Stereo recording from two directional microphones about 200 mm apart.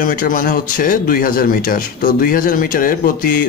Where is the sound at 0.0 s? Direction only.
45° left (ahead or behind).